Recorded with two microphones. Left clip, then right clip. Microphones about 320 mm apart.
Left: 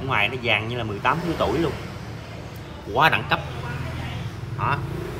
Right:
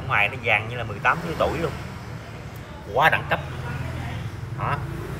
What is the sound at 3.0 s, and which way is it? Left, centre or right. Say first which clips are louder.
Speech: even; centre.